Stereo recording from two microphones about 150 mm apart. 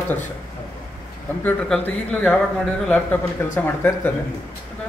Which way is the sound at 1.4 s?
10° left (ahead or behind).